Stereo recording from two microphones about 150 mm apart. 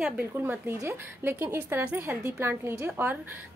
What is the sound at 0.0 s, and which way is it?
Speech, 10° right (ahead or behind).